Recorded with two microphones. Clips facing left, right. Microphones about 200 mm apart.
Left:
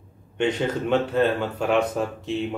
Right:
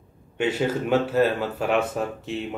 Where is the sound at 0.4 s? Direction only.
5° right (ahead or behind).